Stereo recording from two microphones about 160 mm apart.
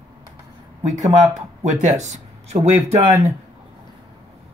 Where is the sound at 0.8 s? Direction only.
50° right (ahead or behind).